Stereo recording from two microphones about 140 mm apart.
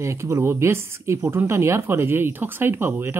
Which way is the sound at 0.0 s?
20° right (ahead or behind).